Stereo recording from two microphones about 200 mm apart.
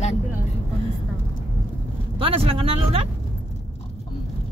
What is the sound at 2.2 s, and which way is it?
Speech, 30° right (ahead or behind).